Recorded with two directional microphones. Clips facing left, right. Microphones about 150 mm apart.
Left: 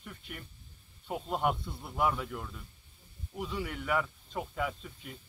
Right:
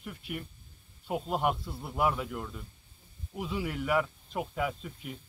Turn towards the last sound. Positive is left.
turn(degrees=-5)  # may be behind; listen again after turning